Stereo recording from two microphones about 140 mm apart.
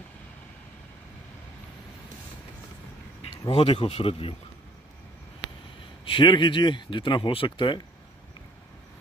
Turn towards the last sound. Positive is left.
turn(degrees=35)  # may be behind; listen again after turning